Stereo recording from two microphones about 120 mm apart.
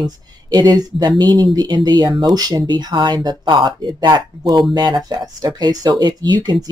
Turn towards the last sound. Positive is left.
turn(degrees=-40)  # may be behind; listen again after turning